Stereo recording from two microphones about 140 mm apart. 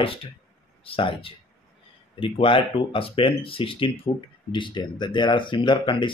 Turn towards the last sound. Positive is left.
turn(degrees=35)  # may be behind; listen again after turning